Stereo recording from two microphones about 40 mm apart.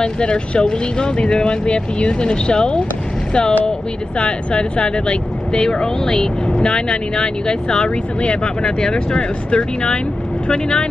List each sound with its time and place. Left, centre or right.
0.0 s speech: left